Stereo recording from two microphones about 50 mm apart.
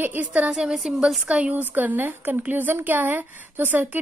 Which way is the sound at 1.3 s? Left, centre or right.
Right.